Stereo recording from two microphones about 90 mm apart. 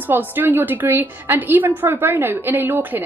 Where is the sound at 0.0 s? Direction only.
20° right (ahead or behind).